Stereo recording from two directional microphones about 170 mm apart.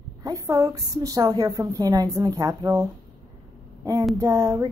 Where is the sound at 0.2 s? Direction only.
20° right (ahead or behind).